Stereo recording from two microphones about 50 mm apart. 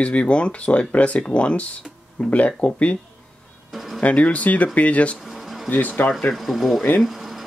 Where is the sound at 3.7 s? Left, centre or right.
Centre.